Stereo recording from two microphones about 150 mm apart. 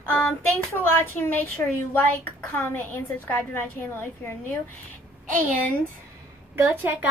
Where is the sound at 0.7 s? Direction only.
15° left (ahead or behind).